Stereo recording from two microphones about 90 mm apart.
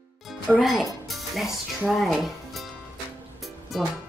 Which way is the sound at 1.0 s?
Centre (ahead or behind).